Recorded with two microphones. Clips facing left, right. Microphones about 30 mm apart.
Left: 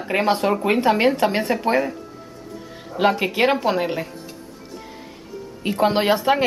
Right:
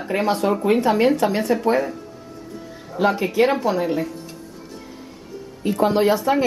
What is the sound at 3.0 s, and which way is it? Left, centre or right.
A woman's voice, left.